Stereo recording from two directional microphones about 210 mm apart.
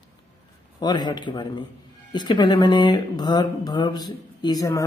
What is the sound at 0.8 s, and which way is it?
Speech, 20° left (ahead or behind).